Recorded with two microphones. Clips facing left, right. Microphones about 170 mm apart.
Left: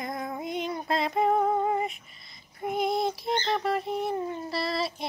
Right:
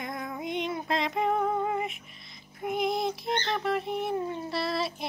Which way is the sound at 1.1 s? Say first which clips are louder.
Left 5 dB; 40° left (ahead or behind).